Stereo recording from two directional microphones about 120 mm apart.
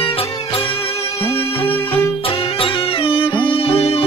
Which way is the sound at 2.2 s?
50° left (ahead or behind).